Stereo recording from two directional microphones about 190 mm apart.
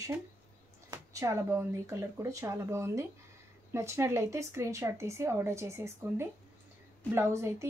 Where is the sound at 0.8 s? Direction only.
15° right (ahead or behind).